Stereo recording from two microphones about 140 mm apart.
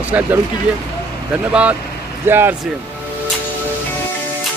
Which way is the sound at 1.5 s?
10° right (ahead or behind).